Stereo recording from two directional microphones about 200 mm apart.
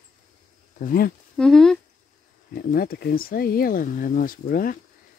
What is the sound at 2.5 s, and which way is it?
Speech, 50° left (ahead or behind).